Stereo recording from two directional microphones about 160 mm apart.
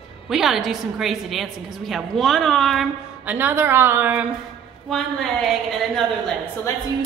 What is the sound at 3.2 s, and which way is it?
A woman's voice, 10° right (ahead or behind).